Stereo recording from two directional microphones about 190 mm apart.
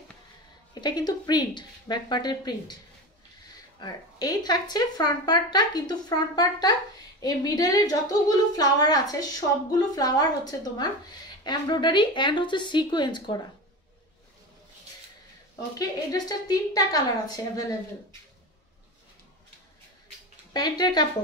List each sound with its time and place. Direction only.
0.7 s speech: 20° left (ahead or behind)
3.8 s speech: 20° left (ahead or behind)
15.8 s speech: 20° left (ahead or behind)
20.5 s speech: 20° left (ahead or behind)